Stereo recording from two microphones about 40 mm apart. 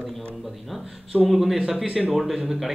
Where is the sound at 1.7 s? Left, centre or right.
Right.